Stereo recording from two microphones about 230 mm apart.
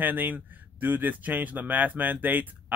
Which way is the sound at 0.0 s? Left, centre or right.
Centre.